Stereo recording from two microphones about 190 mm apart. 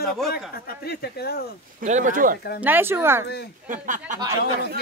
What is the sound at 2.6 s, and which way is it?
Speech, 10° right (ahead or behind).